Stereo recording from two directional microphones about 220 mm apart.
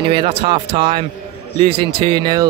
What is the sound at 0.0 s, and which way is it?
Speech, 25° right (ahead or behind).